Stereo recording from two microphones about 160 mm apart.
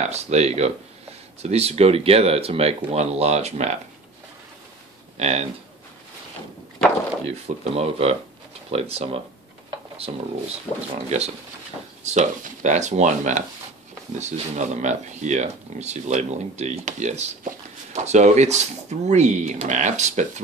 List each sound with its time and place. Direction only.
0.0 s speech: 45° right (ahead or behind)
5.1 s speech: 40° right (ahead or behind)
7.4 s speech: 40° right (ahead or behind)